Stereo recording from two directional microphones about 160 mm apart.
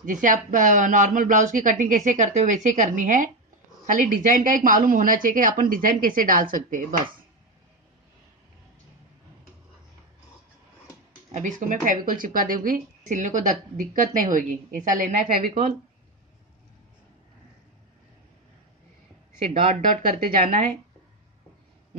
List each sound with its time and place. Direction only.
0.0 s a woman's voice: 55° right (ahead or behind)
11.3 s a woman's voice: 50° right (ahead or behind)
19.6 s speech: 50° right (ahead or behind)